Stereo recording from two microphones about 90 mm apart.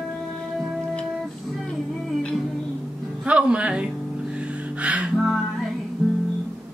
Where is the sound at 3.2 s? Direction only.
15° right (ahead or behind).